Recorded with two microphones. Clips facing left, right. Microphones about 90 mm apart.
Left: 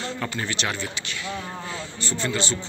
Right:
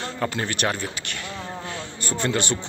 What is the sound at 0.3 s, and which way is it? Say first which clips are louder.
A man's voice: right 3 dB; 50° right (ahead or behind).